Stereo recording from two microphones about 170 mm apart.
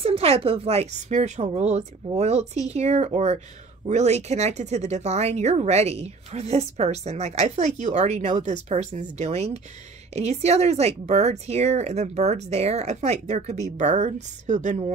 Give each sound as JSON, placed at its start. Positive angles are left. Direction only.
{"t": 0.0, "sound": "speech", "side_deg": -35}